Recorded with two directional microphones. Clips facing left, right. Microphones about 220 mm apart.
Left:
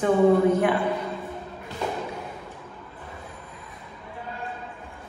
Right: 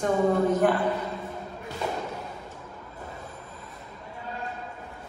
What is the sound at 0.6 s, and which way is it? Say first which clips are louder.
Speech: even; 10° left (ahead or behind).